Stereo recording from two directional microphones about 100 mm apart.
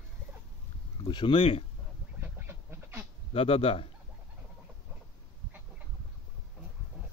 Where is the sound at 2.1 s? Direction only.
25° right (ahead or behind).